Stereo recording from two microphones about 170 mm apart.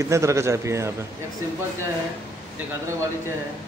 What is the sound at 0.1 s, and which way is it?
Speech, 15° right (ahead or behind).